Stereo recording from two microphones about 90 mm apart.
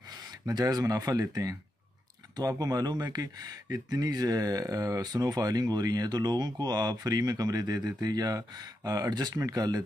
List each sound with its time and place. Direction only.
0.5 s speech: 50° right (ahead or behind)